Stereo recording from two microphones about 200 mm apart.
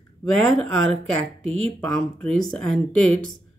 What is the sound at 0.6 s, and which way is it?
Speech, 90° right.